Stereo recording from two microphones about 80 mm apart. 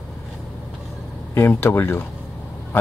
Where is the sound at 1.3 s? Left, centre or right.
Left.